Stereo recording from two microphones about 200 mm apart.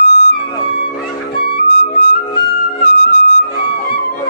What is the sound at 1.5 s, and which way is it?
Flute, 45° left (ahead or behind).